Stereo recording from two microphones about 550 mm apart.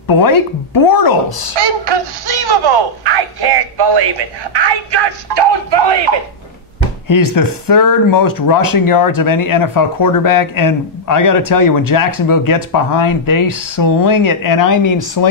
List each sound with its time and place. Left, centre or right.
0.0 s speech: left
2.2 s speech: right
7.1 s speech: left